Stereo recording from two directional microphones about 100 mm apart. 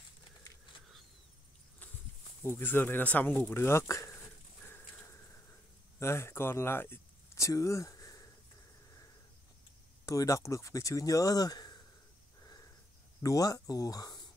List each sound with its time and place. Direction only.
2.4 s speech: 20° left (ahead or behind)
3.4 s speech: 25° left (ahead or behind)
5.9 s speech: 25° left (ahead or behind)
10.0 s speech: 35° left (ahead or behind)
12.4 s a sound: 40° left (ahead or behind)
13.2 s speech: 35° left (ahead or behind)